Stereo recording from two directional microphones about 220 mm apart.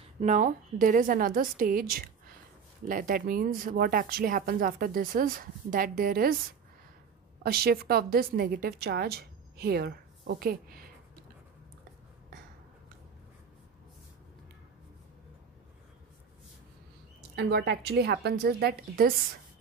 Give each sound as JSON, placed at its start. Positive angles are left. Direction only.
{"t": 0.2, "sound": "speech", "side_deg": -35}
{"t": 7.4, "sound": "a woman's voice", "side_deg": -45}
{"t": 17.4, "sound": "a woman's voice", "side_deg": -50}